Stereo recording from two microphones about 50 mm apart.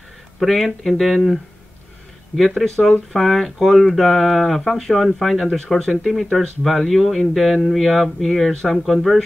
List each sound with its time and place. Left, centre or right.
0.4 s speech: centre